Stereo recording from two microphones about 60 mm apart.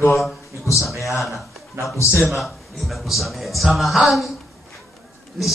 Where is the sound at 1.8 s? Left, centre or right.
Right.